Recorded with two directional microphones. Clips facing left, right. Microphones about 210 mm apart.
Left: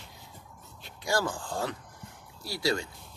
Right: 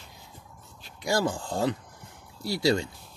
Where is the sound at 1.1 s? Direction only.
25° right (ahead or behind).